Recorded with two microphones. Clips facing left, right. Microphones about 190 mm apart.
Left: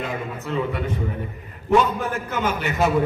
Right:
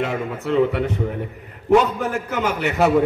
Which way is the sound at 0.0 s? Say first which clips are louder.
Right 5 dB; 70° right (ahead or behind).